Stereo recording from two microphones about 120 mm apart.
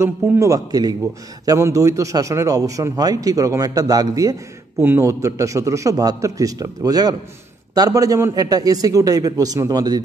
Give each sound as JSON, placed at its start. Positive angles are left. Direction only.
{"t": 0.0, "sound": "a man's voice", "side_deg": -25}
{"t": 4.7, "sound": "a man's voice", "side_deg": -15}